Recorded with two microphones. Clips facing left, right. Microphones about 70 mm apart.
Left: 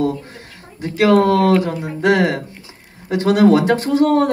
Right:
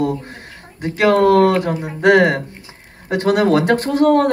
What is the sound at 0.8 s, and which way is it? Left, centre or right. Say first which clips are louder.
Speech: even; right.